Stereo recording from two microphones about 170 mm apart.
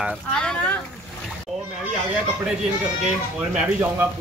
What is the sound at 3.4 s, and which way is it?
Speech, 10° right (ahead or behind).